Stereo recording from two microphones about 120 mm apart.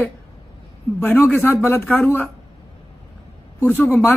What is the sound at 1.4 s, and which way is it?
Speech, 15° left (ahead or behind).